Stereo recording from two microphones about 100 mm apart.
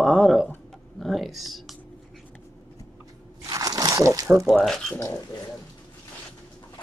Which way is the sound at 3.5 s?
40° right (ahead or behind).